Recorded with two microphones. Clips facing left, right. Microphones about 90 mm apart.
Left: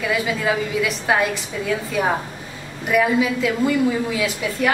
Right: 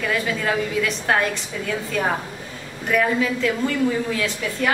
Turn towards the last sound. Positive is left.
turn(degrees=10)  # may be behind; listen again after turning